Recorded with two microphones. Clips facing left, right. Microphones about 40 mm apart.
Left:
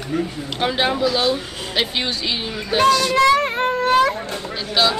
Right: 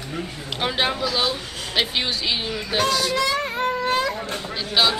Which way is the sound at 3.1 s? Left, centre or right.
Left.